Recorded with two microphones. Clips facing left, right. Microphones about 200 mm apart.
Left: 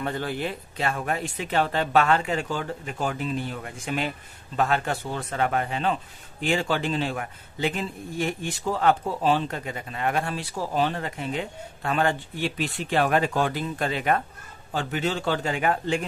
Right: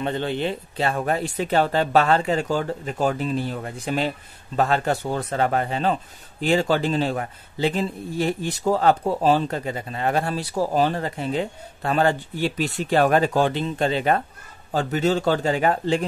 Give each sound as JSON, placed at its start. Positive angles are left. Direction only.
{"t": 0.0, "sound": "speech", "side_deg": -25}